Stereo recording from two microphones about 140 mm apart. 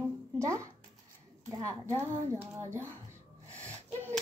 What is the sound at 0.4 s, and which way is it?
A woman's voice, 20° right (ahead or behind).